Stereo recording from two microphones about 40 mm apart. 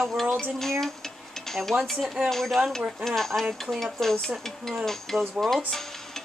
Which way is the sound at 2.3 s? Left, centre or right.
Centre.